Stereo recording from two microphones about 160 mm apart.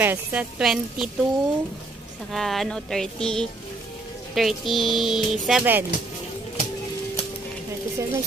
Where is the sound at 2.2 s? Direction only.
Centre (ahead or behind).